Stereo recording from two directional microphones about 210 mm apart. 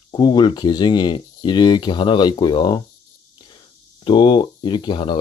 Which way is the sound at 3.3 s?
20° left (ahead or behind).